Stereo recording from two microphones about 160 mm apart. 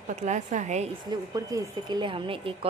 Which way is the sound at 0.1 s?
45° right (ahead or behind).